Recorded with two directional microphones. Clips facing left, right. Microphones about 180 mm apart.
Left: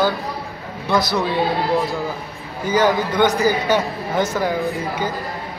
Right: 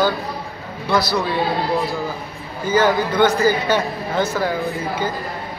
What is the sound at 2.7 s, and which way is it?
Speech, 15° left (ahead or behind).